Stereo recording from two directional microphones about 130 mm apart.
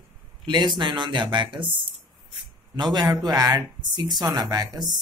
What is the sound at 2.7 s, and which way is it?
Speech, 35° right (ahead or behind).